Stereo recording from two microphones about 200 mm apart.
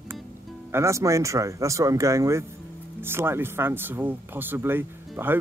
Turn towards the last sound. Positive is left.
turn(degrees=-10)  # may be behind; listen again after turning